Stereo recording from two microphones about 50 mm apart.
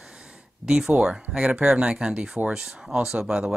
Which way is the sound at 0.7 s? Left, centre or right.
Centre.